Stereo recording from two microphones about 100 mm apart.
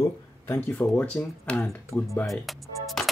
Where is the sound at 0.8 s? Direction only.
10° left (ahead or behind).